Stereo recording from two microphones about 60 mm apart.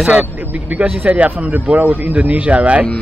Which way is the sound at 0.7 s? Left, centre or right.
Right.